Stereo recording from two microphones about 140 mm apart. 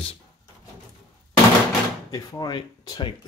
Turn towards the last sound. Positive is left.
turn(degrees=35)  # may be behind; listen again after turning